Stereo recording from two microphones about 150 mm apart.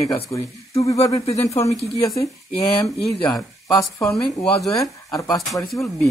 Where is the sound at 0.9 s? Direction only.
20° left (ahead or behind).